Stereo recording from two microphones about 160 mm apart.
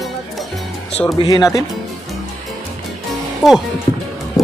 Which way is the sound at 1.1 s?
25° left (ahead or behind).